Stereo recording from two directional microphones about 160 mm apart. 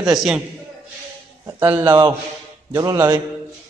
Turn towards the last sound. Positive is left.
turn(degrees=-15)  # may be behind; listen again after turning